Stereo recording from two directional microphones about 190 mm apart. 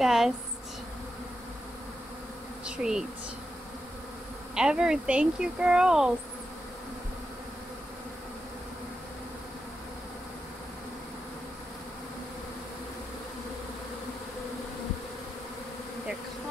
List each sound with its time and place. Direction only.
0.0 s speech: centre (ahead or behind)
2.6 s bee: 5° right (ahead or behind)
4.6 s speech: 5° right (ahead or behind)